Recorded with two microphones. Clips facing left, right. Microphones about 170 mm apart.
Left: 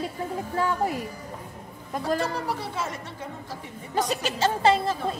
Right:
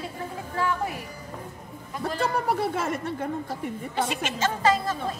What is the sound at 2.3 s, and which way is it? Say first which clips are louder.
Speech: right 4 dB; 55° right (ahead or behind).